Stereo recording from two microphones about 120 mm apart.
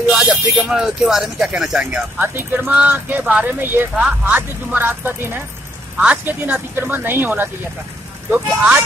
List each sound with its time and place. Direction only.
0.1 s speech: centre (ahead or behind); by 7.4 s 15° right (ahead or behind)